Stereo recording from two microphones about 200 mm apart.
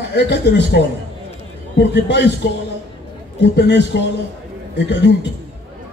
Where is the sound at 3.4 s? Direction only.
60° left (ahead or behind).